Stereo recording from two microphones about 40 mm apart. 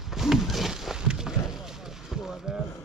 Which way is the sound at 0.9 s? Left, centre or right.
Centre.